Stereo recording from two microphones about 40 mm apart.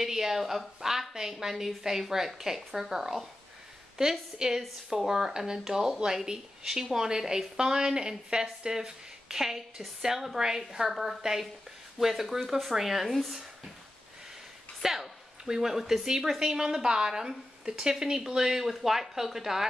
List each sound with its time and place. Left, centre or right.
0.0 s a woman's voice: centre
14.8 s a woman's voice: centre